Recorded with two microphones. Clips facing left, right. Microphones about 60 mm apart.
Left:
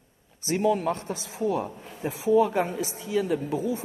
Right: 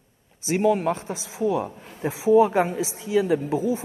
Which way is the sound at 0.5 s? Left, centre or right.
Right.